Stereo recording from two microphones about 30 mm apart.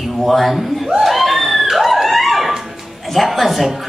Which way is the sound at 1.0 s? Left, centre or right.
Centre.